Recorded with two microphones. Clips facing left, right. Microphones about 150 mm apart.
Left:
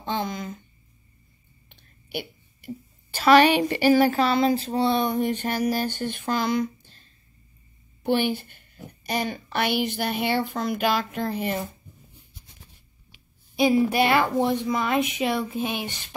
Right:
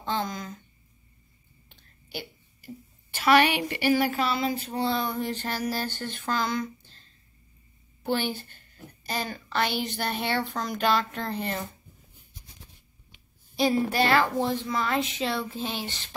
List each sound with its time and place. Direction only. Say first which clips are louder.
0.0 s speech: left 2 dB; 15° left (ahead or behind)
1.7 s whispering: left 5 dB; 15° left (ahead or behind)
3.6 s a woman's voice: left 6 dB; 40° left (ahead or behind)
4.6 s a sound: left 5 dB; 25° left (ahead or behind)
5.9 s a woman's voice: left 3 dB; 15° left (ahead or behind)
8.0 s a woman's voice: left 5 dB; 15° left (ahead or behind)
13.1 s a woman's voice: left 4 dB; 10° left (ahead or behind)